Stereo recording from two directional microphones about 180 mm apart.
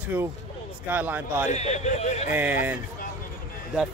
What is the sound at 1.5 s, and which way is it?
Speech, 40° left (ahead or behind).